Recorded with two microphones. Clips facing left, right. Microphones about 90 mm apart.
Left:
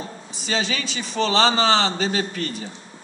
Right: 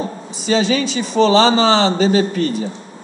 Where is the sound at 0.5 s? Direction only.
20° right (ahead or behind).